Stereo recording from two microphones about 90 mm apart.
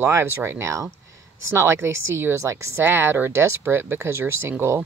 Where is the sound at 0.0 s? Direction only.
25° right (ahead or behind).